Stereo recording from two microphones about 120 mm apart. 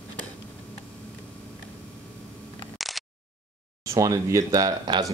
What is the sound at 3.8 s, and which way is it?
Speech, 25° right (ahead or behind).